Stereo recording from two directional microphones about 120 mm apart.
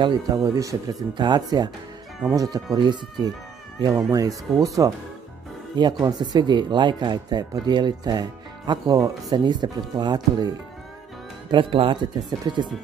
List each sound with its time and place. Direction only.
0.0 s speech: 35° right (ahead or behind)
11.5 s speech: 45° right (ahead or behind)